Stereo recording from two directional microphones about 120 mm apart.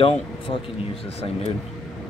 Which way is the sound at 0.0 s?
45° left (ahead or behind).